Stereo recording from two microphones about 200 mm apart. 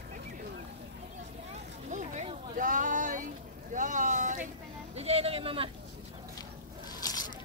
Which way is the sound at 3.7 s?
40° right (ahead or behind).